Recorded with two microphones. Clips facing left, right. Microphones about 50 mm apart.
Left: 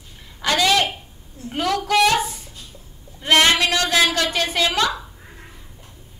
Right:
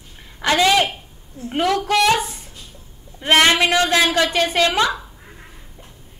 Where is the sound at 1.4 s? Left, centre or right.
Right.